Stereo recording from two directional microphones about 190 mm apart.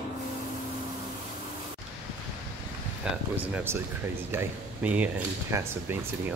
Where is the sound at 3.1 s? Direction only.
10° right (ahead or behind).